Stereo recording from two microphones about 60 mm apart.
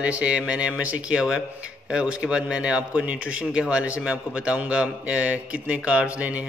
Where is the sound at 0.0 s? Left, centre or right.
Right.